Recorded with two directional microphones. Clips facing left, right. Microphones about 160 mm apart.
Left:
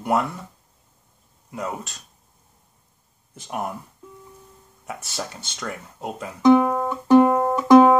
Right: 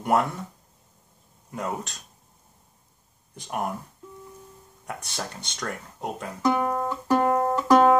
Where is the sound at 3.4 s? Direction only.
Centre (ahead or behind).